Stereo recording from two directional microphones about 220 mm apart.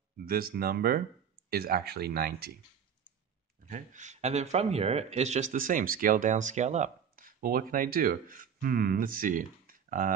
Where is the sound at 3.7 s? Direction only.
35° right (ahead or behind).